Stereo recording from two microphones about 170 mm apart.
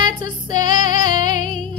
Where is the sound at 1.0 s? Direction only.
25° right (ahead or behind).